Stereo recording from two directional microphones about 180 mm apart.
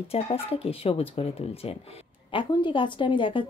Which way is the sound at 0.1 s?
35° left (ahead or behind).